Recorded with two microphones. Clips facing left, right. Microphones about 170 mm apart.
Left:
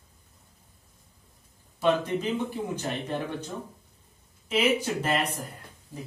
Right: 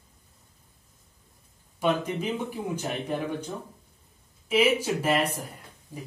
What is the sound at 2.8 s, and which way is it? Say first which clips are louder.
Speech: right 1 dB; 10° right (ahead or behind).